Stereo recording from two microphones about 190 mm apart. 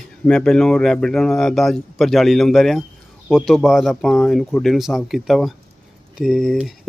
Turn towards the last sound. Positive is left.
turn(degrees=0)  # may be behind; listen again after turning